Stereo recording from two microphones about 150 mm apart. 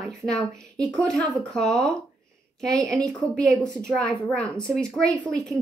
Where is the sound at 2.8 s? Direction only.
25° right (ahead or behind).